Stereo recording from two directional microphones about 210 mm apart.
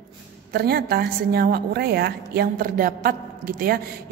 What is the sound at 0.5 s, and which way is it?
A woman's voice, 45° right (ahead or behind).